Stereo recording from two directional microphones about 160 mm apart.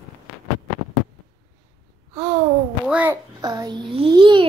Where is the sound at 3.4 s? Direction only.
25° right (ahead or behind).